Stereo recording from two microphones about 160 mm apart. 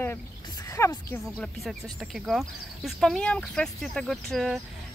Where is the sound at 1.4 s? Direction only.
Centre (ahead or behind).